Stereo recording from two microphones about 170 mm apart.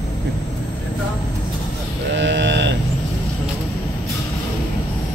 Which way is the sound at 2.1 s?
90° right.